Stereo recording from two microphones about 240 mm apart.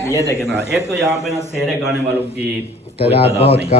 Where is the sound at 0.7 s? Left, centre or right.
Centre.